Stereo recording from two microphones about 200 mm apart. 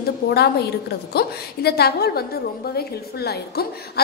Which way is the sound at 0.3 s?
55° left (ahead or behind).